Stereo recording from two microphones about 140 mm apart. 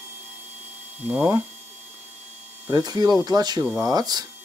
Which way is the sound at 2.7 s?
25° right (ahead or behind).